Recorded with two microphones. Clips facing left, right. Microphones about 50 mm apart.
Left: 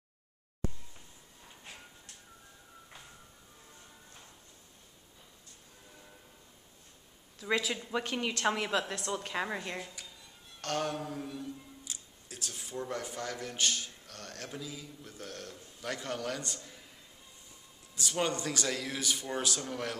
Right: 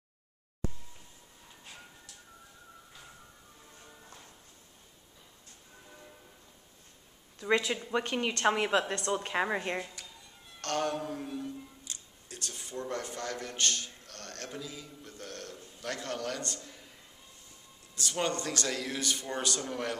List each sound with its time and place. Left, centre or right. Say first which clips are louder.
7.3 s a woman's voice: right 3 dB; centre
9.1 s a woman's voice: right 4 dB; centre
10.6 s a man's voice: right 2 dB; centre
17.9 s a man's voice: even; centre